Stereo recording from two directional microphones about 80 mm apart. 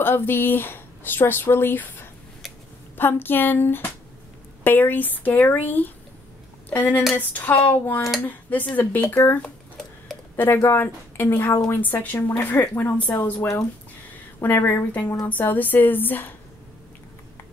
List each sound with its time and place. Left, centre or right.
0.0 s speech: left
14.4 s speech: left
15.0 s speech: left
15.2 s speech: left